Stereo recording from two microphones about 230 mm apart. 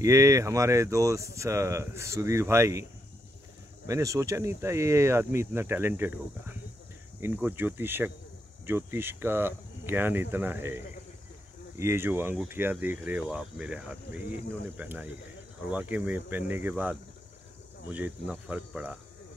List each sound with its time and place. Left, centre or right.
0.0 s speech: centre